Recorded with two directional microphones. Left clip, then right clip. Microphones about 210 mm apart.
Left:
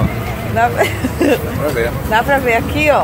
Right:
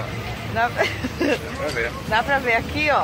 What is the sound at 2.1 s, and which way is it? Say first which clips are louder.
Speech: left 6 dB; 10° right (ahead or behind).